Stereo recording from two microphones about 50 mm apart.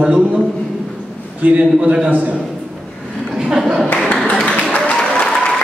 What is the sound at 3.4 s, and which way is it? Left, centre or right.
Clapping, centre.